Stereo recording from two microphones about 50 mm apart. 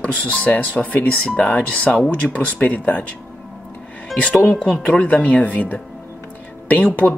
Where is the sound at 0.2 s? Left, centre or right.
Left.